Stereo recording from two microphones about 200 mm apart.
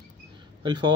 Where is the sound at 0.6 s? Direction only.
25° right (ahead or behind).